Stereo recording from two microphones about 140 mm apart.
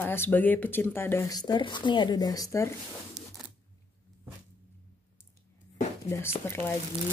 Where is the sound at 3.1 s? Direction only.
Centre (ahead or behind).